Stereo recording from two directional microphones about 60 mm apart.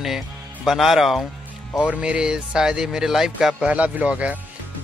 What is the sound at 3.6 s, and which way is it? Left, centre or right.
Speech, right.